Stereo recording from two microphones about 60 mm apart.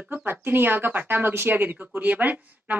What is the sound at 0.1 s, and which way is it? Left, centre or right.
Speech, right.